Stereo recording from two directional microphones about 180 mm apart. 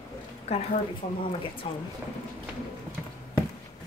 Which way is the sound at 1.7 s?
30° left (ahead or behind).